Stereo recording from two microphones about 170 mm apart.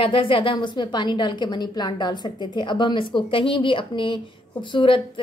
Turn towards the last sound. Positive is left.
turn(degrees=30)  # may be behind; listen again after turning